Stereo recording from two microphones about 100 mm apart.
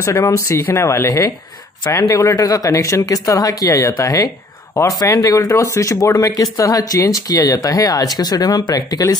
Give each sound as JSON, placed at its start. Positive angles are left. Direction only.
{"t": 0.0, "sound": "speech", "side_deg": 30}